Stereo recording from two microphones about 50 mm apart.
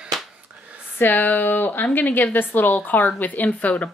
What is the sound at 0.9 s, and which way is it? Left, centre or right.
Speech, left.